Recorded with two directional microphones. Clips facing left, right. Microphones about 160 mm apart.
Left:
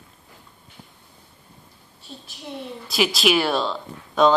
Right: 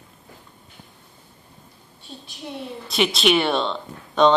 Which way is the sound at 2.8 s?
Centre (ahead or behind).